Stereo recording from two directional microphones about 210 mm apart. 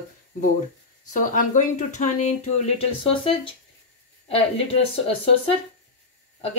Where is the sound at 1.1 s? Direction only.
35° left (ahead or behind).